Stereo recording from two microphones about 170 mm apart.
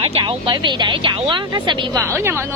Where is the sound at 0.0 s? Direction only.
35° right (ahead or behind).